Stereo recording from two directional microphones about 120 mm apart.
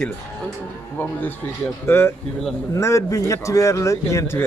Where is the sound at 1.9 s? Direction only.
20° left (ahead or behind).